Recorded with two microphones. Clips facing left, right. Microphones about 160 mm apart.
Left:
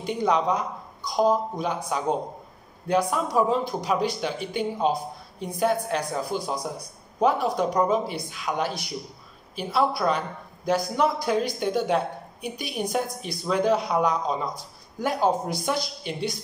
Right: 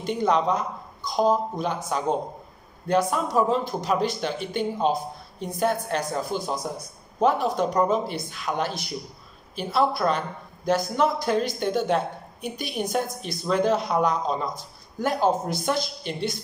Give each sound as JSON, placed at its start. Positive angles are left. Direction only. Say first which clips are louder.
{"t": 0.0, "sound": "a woman's voice", "louder": "right 1 dB", "side_deg": 10}
{"t": 3.3, "sound": "a woman's voice", "louder": "even", "side_deg": 10}